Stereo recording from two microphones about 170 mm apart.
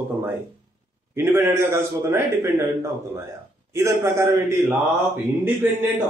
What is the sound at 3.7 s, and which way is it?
Speech, 15° right (ahead or behind).